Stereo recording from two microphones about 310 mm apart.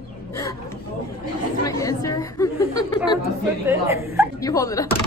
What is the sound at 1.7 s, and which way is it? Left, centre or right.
Chatter, centre.